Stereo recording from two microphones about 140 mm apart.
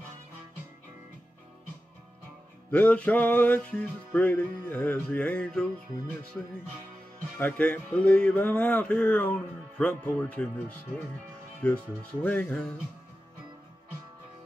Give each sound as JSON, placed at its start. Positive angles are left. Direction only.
{"t": 2.7, "sound": "music", "side_deg": 10}
{"t": 7.3, "sound": "music", "side_deg": 10}